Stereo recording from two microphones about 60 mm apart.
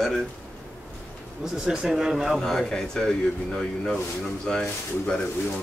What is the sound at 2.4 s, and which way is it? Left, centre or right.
Speech, centre.